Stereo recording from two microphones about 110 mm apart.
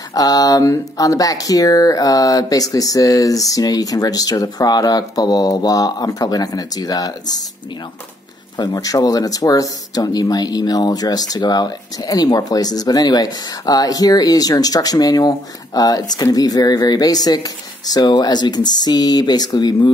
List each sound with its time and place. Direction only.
0.1 s speech: 35° left (ahead or behind)
8.5 s speech: 35° left (ahead or behind)